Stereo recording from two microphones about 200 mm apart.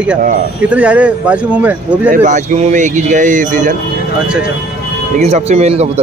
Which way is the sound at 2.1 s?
40° right (ahead or behind).